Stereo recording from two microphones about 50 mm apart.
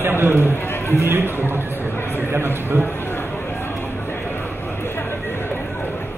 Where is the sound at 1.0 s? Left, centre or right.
Right.